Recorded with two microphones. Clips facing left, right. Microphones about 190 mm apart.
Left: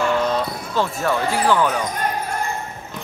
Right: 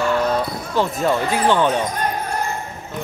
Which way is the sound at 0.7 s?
20° right (ahead or behind).